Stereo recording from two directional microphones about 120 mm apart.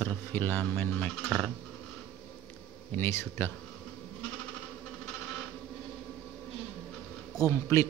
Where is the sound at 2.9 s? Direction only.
20° left (ahead or behind).